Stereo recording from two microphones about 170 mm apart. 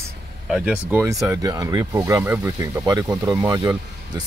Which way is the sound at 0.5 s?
5° right (ahead or behind).